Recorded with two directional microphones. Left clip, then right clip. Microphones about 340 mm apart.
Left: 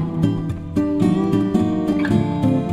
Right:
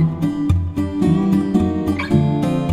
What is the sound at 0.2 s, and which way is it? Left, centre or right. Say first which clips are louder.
Music: right 1 dB; centre.